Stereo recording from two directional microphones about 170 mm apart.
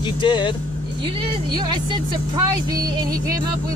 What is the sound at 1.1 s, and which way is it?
Speech, 30° right (ahead or behind).